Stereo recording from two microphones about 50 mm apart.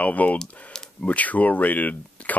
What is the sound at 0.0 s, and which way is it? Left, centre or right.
Speech, left.